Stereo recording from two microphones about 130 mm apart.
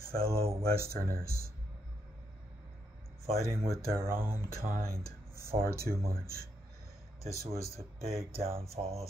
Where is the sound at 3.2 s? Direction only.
50° right (ahead or behind).